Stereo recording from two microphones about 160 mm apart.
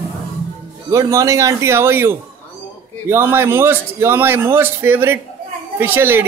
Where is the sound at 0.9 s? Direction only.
20° right (ahead or behind).